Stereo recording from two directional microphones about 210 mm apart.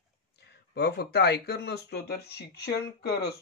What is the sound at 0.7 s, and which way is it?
A man's voice, 50° left (ahead or behind).